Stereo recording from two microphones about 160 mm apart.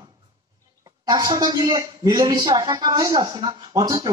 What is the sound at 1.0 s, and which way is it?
Speech, 25° right (ahead or behind).